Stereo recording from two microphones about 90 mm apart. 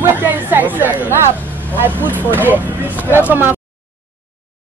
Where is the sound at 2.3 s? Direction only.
20° right (ahead or behind).